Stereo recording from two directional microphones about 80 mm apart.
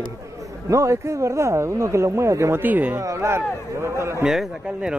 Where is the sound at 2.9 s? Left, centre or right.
Right.